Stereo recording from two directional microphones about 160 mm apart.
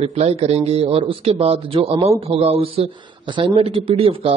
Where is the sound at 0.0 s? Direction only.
40° right (ahead or behind).